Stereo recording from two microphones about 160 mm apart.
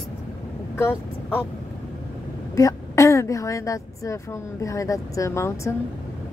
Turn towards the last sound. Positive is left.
turn(degrees=15)  # may be behind; listen again after turning